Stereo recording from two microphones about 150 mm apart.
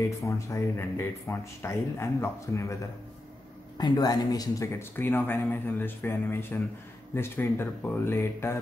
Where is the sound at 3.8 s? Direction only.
25° left (ahead or behind).